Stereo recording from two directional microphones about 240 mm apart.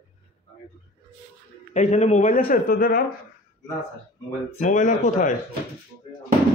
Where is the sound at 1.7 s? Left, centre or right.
Left.